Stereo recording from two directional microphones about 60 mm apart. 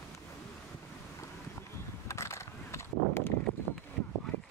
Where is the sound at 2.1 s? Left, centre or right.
Left.